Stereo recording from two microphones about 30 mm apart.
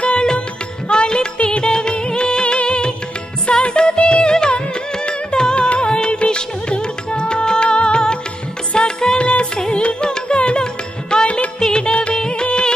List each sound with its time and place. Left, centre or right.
0.0 s music: left
1.6 s music of bollywood: left
2.4 s music: left
11.8 s music of bollywood: left